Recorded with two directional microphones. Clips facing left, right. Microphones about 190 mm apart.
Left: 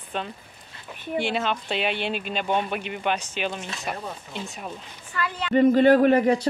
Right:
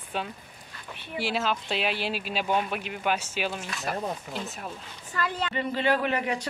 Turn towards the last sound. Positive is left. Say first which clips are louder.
# left 9 dB
turn(degrees=40)  # may be behind; listen again after turning